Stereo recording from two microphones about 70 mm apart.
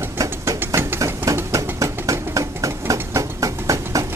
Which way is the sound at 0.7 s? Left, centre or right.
Right.